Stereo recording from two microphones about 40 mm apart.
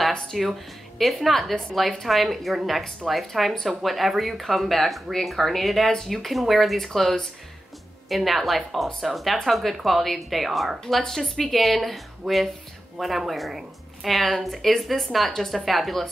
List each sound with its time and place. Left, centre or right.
0.4 s speech: centre